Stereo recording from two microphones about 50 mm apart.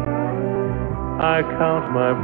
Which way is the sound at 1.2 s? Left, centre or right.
Centre.